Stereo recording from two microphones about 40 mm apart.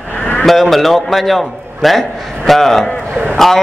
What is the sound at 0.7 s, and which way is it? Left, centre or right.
A man's voice, centre.